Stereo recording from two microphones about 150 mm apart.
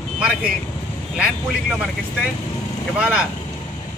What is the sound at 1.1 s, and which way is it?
Speech, 5° right (ahead or behind).